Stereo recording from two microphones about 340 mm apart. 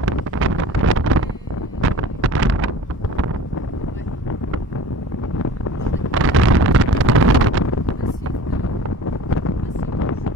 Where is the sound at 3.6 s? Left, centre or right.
Left.